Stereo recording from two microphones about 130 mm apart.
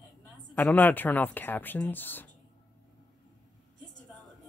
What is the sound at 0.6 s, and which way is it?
Speech, 15° left (ahead or behind).